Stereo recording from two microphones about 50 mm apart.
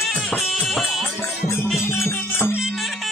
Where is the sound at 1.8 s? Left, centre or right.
Left.